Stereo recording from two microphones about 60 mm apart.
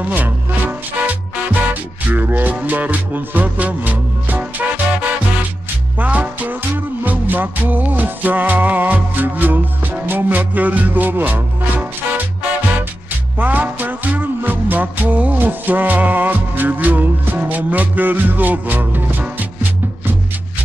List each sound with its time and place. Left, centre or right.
0.1 s music: right
5.9 s music: right
13.4 s music: right